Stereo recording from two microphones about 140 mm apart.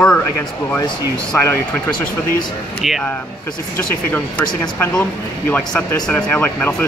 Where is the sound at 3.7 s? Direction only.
10° left (ahead or behind).